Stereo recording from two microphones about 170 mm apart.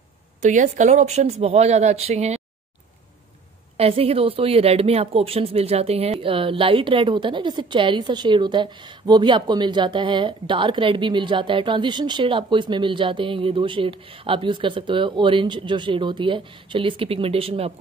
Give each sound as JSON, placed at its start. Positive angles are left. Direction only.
{"t": 0.4, "sound": "speech", "side_deg": -45}
{"t": 3.7, "sound": "a woman's voice", "side_deg": -35}